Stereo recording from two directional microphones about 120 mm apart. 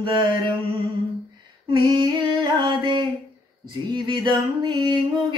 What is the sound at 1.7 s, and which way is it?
Music, 35° right (ahead or behind).